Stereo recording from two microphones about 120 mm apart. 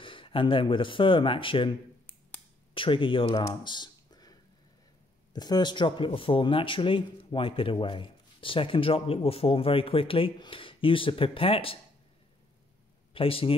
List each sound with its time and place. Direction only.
0.0 s speech: 45° left (ahead or behind)
2.7 s speech: 45° left (ahead or behind)
3.3 s a sound: 35° left (ahead or behind)
5.3 s speech: 35° left (ahead or behind); by 11.8 s 50° left (ahead or behind)
13.1 s a man's voice: 50° left (ahead or behind)